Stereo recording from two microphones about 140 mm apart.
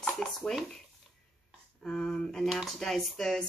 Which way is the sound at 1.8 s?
5° left (ahead or behind).